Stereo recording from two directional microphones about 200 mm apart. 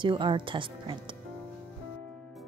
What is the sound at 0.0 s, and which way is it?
A woman's voice, 25° right (ahead or behind).